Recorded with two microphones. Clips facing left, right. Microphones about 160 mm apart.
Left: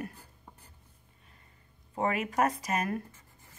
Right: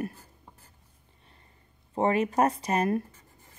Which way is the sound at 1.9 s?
30° right (ahead or behind).